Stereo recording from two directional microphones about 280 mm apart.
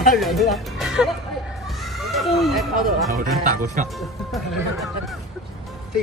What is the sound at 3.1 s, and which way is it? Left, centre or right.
Speech, right.